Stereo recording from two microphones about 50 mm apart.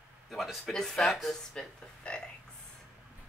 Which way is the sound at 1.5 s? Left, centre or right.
Centre.